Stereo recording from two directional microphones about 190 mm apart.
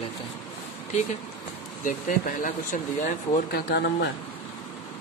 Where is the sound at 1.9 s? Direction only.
45° left (ahead or behind).